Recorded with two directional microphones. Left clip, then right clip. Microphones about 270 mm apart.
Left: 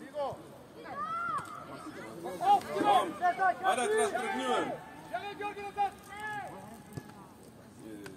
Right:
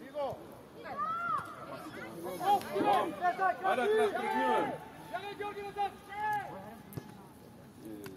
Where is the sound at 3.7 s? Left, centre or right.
Left.